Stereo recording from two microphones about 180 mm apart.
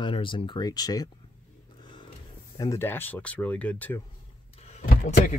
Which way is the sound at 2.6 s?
15° left (ahead or behind).